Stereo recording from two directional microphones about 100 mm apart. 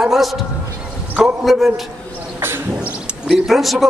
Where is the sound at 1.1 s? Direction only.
15° right (ahead or behind).